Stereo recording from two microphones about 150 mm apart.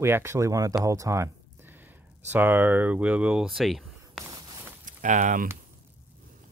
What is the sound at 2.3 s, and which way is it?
Speech, 10° right (ahead or behind).